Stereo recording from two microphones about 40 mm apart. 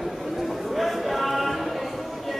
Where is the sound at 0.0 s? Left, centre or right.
Centre.